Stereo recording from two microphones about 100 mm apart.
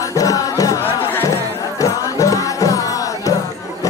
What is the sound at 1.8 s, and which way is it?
Music, 35° left (ahead or behind).